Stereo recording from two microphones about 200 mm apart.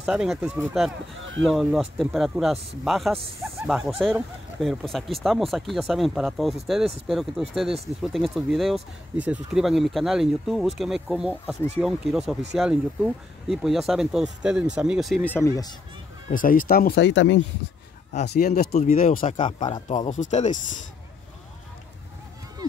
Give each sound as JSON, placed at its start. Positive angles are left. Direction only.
{"t": 0.0, "sound": "speech", "side_deg": 0}
{"t": 15.3, "sound": "speech", "side_deg": 15}
{"t": 16.3, "sound": "speech", "side_deg": 45}
{"t": 18.2, "sound": "speech", "side_deg": 50}
{"t": 18.6, "sound": "speech", "side_deg": 35}
{"t": 19.3, "sound": "speech", "side_deg": 25}
{"t": 20.1, "sound": "speech", "side_deg": 35}